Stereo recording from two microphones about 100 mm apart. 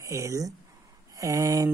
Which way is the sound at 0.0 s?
30° right (ahead or behind).